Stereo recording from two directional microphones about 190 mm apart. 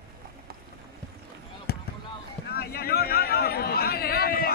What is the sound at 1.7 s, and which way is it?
Basketball bounce, 60° left (ahead or behind).